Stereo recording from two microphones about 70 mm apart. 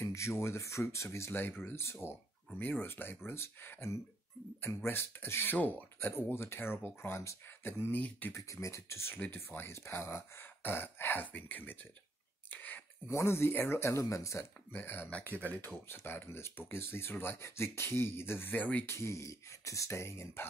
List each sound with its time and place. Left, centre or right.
0.0 s speech: left
8.4 s speech: left
9.1 s speech: left
12.4 s a sound: left
13.1 s speech: left
14.7 s speech: left
15.0 s speech: centre
15.6 s speech: left
18.9 s speech: left